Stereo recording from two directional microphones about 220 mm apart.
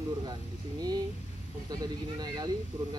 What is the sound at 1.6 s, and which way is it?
Speech, 20° right (ahead or behind).